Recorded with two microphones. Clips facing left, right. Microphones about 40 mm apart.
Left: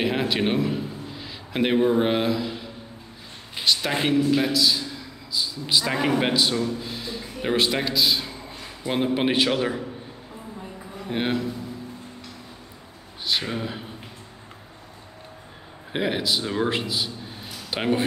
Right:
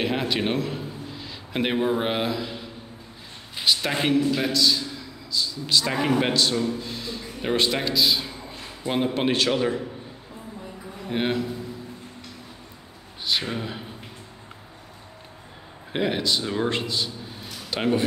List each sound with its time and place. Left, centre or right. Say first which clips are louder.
0.0 s a man's voice: left 1 dB; centre
3.6 s a man's voice: even; centre
6.6 s a sound: even; centre
9.1 s speech: left 3 dB; centre
11.1 s speech: even; centre
13.4 s speech: left 1 dB; centre
15.9 s speech: even; centre
17.6 s speech: even; centre